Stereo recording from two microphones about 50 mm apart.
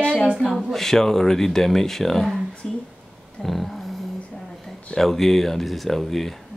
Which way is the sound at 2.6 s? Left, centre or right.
Centre.